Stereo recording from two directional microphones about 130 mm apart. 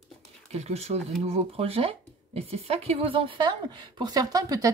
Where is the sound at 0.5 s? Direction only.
55° right (ahead or behind).